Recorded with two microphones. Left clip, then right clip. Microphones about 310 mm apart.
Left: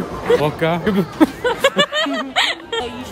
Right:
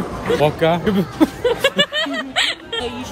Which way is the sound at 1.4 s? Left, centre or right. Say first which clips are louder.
Left 1 dB; left.